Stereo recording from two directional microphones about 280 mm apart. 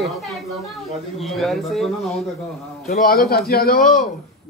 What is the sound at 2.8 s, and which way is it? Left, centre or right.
A man's voice, left.